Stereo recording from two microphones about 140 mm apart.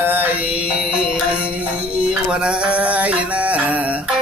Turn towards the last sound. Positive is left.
turn(degrees=-10)  # may be behind; listen again after turning